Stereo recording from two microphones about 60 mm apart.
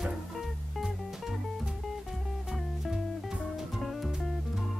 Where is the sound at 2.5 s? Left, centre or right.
Centre.